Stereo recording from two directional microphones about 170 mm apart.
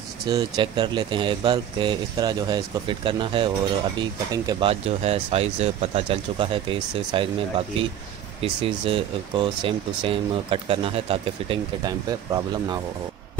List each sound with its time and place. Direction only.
0.3 s speech: 25° right (ahead or behind)
4.6 s speech: 35° right (ahead or behind)